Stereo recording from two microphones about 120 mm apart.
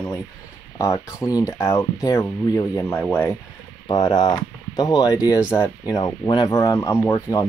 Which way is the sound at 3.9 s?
35° left (ahead or behind).